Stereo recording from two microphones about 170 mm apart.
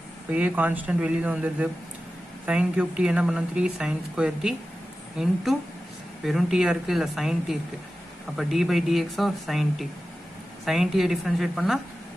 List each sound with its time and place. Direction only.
0.3 s speech: 10° right (ahead or behind)